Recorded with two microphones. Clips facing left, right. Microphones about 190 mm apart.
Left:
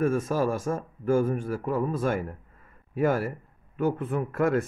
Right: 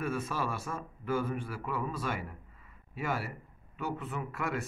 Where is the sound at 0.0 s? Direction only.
45° left (ahead or behind).